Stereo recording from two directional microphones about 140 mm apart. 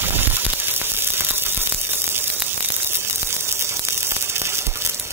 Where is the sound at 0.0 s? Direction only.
15° right (ahead or behind).